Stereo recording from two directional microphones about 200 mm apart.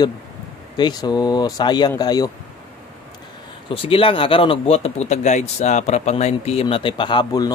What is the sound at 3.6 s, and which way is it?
Speech, 25° left (ahead or behind).